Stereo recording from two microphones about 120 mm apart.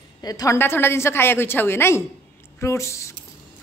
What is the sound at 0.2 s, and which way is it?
Speech, 30° left (ahead or behind).